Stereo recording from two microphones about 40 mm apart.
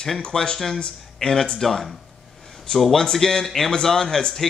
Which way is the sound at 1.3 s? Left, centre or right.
Centre.